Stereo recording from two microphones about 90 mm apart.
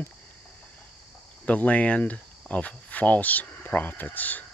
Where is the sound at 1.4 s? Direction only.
15° left (ahead or behind).